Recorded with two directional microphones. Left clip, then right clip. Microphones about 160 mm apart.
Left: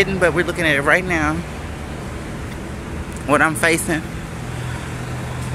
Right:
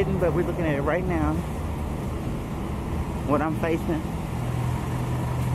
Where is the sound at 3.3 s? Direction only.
40° left (ahead or behind).